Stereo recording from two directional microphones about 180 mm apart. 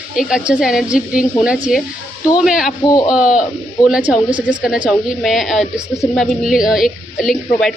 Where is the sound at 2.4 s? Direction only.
5° right (ahead or behind).